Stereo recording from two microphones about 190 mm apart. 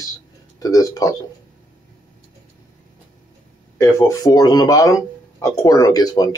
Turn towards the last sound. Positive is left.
turn(degrees=20)  # may be behind; listen again after turning